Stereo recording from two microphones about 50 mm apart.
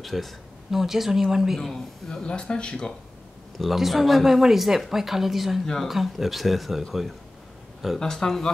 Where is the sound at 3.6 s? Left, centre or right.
Centre.